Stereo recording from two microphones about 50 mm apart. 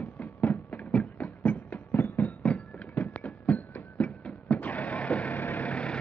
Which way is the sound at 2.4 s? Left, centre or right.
Left.